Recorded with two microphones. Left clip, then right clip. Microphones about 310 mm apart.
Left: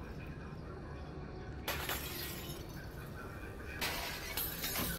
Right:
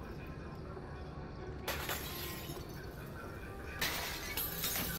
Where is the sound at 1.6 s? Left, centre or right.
Centre.